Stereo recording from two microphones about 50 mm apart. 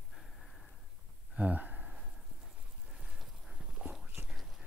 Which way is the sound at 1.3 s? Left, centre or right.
Right.